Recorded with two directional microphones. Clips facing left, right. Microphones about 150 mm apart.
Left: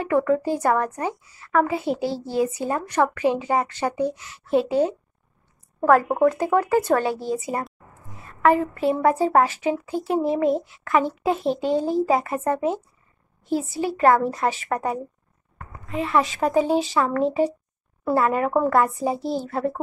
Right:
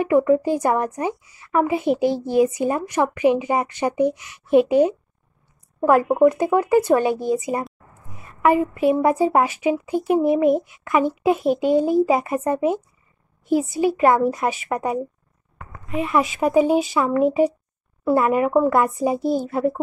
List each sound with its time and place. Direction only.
0.0 s a woman's voice: 15° right (ahead or behind)
8.1 s a sound: 15° right (ahead or behind)
9.0 s a woman's voice: 15° right (ahead or behind)